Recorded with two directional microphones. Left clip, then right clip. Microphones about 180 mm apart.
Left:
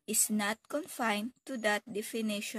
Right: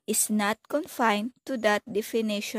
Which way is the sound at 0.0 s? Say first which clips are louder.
Right 6 dB; 45° right (ahead or behind).